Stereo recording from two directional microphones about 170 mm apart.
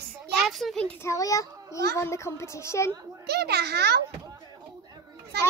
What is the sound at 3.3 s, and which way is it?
Speech, 75° right (ahead or behind).